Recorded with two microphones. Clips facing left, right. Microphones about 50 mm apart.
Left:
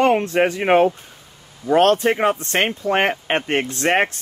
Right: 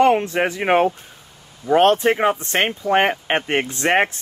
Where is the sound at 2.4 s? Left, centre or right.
Centre.